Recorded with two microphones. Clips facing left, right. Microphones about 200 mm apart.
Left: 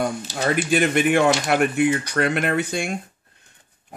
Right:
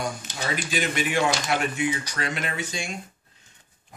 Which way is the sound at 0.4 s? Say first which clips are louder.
Left 9 dB; 55° left (ahead or behind).